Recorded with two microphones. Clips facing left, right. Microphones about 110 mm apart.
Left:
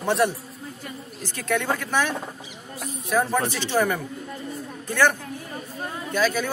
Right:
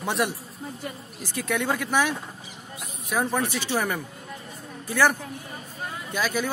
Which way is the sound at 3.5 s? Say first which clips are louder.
Left 4 dB; 10° right (ahead or behind).